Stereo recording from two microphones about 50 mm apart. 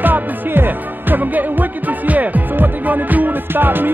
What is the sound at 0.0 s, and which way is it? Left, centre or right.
Music, right.